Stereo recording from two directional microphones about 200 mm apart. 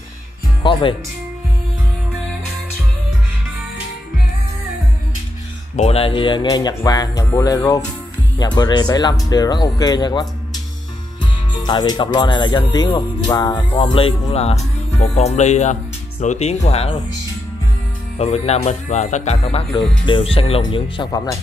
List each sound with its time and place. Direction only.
0.6 s speech: 20° left (ahead or behind)
5.8 s speech: 30° left (ahead or behind)
11.6 s speech: 20° left (ahead or behind)
18.1 s speech: 35° left (ahead or behind)